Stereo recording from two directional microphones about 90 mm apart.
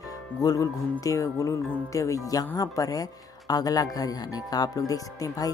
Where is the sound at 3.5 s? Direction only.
45° left (ahead or behind).